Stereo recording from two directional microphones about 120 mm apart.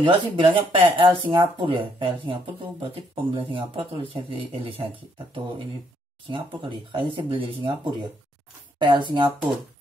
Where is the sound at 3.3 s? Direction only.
45° right (ahead or behind).